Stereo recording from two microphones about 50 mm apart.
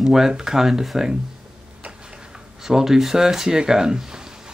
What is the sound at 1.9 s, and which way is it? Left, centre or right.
Tick-tock, centre.